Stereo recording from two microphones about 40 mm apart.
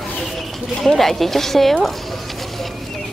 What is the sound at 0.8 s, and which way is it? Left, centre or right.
Speech, centre.